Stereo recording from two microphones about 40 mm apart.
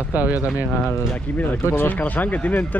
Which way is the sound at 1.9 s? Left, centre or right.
Left.